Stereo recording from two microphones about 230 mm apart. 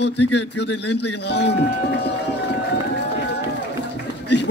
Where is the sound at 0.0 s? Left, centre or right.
Left.